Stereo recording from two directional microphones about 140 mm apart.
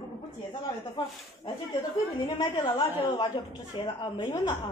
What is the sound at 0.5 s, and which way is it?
A child's voice, 30° left (ahead or behind).